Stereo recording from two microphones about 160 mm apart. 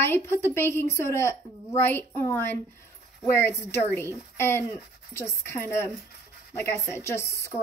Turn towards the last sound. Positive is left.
turn(degrees=20)  # may be behind; listen again after turning